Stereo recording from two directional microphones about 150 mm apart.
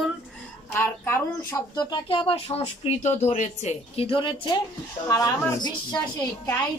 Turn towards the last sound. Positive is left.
turn(degrees=25)  # may be behind; listen again after turning